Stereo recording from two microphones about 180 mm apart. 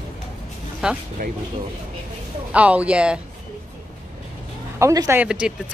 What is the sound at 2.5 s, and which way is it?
Speech, 5° right (ahead or behind).